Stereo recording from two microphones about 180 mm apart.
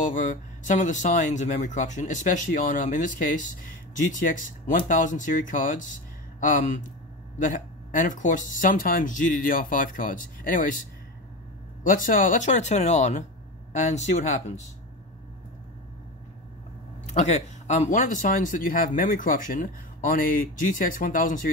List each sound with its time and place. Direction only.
0.1 s speech: 45° left (ahead or behind)
8.1 s speech: 45° left (ahead or behind)
11.8 s speech: 50° left (ahead or behind)
17.1 s speech: 40° left (ahead or behind)